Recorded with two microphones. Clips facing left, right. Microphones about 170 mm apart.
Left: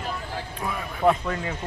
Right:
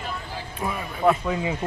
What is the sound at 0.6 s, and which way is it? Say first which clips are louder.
Speech: right 1 dB; 5° right (ahead or behind).